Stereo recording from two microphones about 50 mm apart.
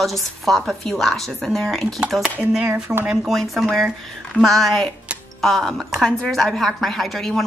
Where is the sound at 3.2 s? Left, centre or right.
Centre.